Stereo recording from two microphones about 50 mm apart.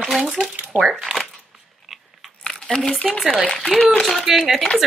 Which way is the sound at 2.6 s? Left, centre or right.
Centre.